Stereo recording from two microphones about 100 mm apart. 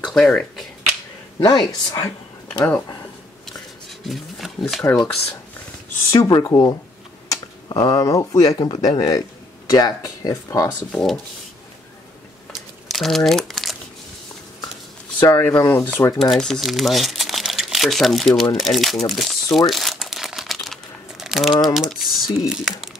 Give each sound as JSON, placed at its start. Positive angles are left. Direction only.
{"t": 0.0, "sound": "a sound", "side_deg": 5}
{"t": 1.4, "sound": "speech", "side_deg": 40}
{"t": 4.0, "sound": "roaring cats", "side_deg": 0}
{"t": 6.1, "sound": "speech", "side_deg": 40}
{"t": 10.9, "sound": "speech", "side_deg": 5}
{"t": 12.8, "sound": "crumpling", "side_deg": 0}
{"t": 15.2, "sound": "speech", "side_deg": 25}
{"t": 16.2, "sound": "speech", "side_deg": 5}
{"t": 18.6, "sound": "crumpling", "side_deg": 0}
{"t": 21.7, "sound": "speech", "side_deg": -5}